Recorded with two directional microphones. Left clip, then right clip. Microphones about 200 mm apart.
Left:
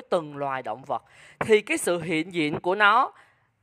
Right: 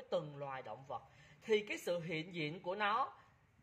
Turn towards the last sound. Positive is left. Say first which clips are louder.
# left 17 dB
turn(degrees=50)  # may be behind; listen again after turning